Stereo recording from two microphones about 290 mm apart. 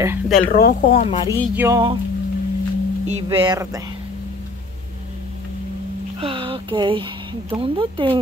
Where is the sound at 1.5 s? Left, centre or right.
Centre.